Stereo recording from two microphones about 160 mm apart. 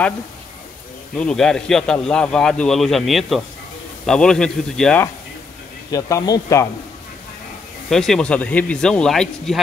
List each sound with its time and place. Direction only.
1.1 s speech: 5° left (ahead or behind)
5.9 s speech: 20° left (ahead or behind)
7.9 s speech: 5° left (ahead or behind)